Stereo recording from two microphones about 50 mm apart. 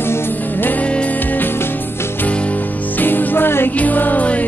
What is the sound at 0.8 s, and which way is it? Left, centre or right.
Music, left.